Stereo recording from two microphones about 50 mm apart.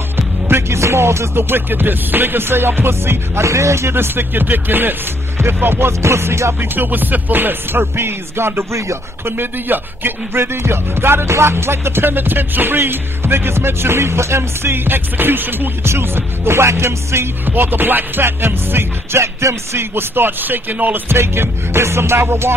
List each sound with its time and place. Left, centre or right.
0.5 s speech: right
5.9 s music: right
6.6 s speech: right
15.8 s music: right
17.5 s speech: right
21.1 s music: right